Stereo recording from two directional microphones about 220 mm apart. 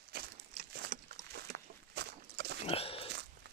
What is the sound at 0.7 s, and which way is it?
Walk, 50° right (ahead or behind).